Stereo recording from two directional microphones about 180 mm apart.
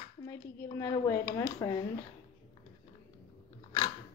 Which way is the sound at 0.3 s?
15° left (ahead or behind).